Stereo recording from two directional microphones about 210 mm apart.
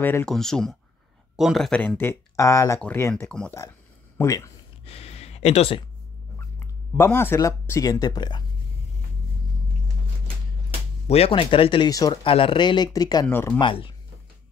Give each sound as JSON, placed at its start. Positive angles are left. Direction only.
{"t": 0.0, "sound": "speech", "side_deg": 5}
{"t": 4.8, "sound": "a sound", "side_deg": 30}
{"t": 7.0, "sound": "speech", "side_deg": 10}
{"t": 11.1, "sound": "speech", "side_deg": 30}
{"t": 13.6, "sound": "speech", "side_deg": 25}